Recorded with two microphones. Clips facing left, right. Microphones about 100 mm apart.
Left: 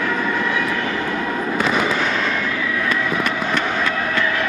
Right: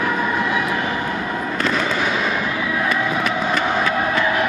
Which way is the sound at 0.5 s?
25° right (ahead or behind).